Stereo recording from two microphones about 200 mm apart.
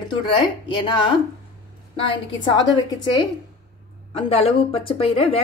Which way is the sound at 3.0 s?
20° left (ahead or behind).